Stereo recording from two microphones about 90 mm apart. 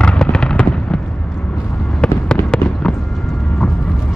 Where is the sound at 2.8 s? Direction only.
5° left (ahead or behind).